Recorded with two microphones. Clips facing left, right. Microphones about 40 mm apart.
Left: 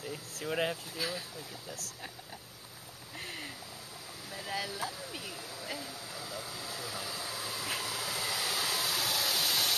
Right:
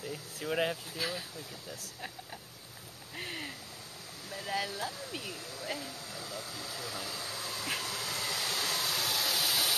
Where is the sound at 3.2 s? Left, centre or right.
Centre.